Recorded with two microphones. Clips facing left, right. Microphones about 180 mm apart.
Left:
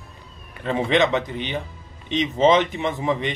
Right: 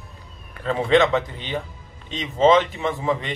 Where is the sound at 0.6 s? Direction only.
20° left (ahead or behind).